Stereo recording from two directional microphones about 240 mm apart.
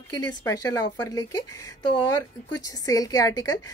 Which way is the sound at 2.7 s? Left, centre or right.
Centre.